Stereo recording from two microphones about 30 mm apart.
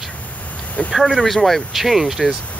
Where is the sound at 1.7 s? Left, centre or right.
Centre.